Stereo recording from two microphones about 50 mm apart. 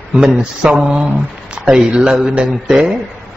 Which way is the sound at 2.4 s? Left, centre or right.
Centre.